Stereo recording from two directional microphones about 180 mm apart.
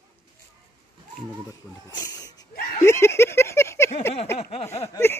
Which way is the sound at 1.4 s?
20° left (ahead or behind).